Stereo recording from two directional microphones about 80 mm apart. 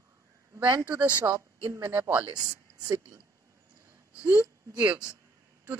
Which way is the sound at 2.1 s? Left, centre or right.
Right.